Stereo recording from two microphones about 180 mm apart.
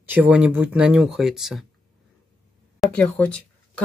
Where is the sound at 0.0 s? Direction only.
10° right (ahead or behind).